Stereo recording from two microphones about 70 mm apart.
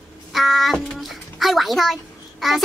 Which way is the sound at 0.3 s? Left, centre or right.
Centre.